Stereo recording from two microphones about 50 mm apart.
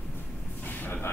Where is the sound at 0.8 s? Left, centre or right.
Left.